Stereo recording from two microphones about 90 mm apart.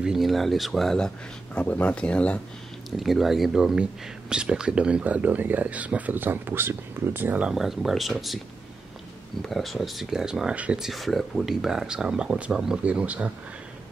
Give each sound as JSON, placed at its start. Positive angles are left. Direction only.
{"t": 0.0, "sound": "speech", "side_deg": -5}
{"t": 3.0, "sound": "speech", "side_deg": 0}
{"t": 7.4, "sound": "speech", "side_deg": -5}
{"t": 9.5, "sound": "speech", "side_deg": 0}